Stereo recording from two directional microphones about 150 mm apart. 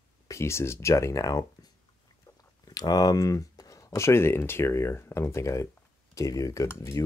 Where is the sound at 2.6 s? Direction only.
25° left (ahead or behind).